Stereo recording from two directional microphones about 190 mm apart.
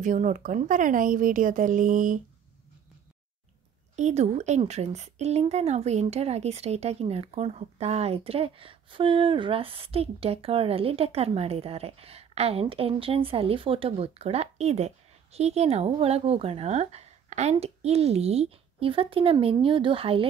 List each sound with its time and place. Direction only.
0.0 s a woman's voice: 40° right (ahead or behind)
3.9 s speech: 35° right (ahead or behind)